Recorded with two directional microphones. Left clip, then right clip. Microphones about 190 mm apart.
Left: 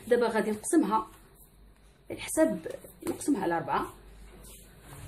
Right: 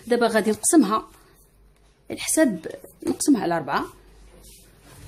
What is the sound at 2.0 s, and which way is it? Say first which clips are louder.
A woman's voice: right 6 dB; 45° right (ahead or behind).